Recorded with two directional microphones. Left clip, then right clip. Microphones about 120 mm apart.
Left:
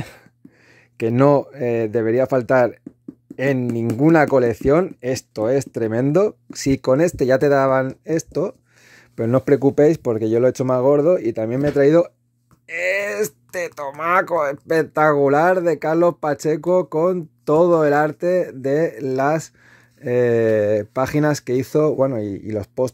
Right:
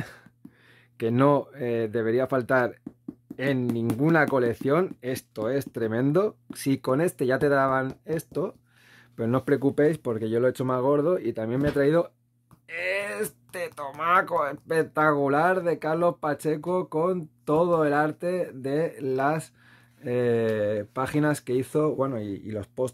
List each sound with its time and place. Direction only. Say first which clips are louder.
0.9 s speech: left 7 dB; 40° left (ahead or behind)
4.0 s speech: left 8 dB; 45° left (ahead or behind)